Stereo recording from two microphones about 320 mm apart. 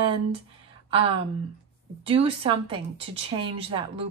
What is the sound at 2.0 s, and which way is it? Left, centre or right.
A woman's voice, centre.